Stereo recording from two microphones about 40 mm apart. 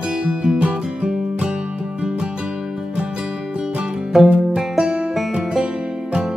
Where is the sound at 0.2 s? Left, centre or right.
Right.